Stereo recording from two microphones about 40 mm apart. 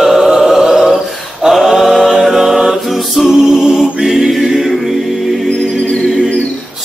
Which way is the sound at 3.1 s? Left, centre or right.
Centre.